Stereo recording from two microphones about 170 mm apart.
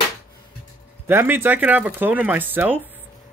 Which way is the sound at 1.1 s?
15° right (ahead or behind).